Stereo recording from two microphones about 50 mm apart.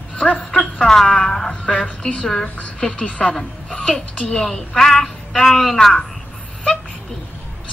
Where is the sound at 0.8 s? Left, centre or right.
Centre.